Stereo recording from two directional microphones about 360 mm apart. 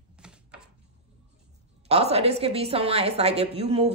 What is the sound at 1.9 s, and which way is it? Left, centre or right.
A woman's voice, centre.